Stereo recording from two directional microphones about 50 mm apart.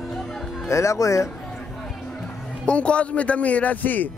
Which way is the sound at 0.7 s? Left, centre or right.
Left.